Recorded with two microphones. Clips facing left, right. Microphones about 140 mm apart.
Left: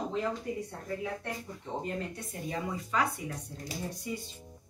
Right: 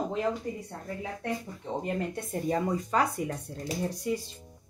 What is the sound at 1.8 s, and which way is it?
Speech, 60° right (ahead or behind).